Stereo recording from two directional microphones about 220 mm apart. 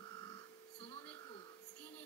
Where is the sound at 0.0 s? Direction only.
20° left (ahead or behind).